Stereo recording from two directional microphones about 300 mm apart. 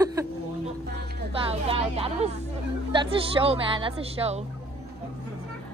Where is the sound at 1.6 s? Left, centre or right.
Centre.